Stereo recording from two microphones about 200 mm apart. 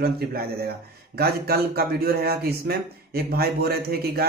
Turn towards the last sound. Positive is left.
turn(degrees=-50)  # may be behind; listen again after turning